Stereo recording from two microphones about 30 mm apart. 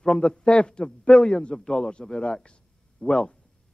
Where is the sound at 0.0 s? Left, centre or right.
Left.